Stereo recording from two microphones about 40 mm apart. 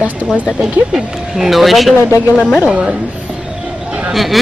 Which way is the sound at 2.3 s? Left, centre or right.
Left.